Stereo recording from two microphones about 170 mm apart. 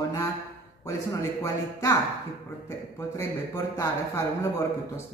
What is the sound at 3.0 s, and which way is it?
Speech, 15° left (ahead or behind).